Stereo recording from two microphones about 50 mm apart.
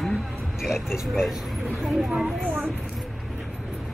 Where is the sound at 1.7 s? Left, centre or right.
Centre.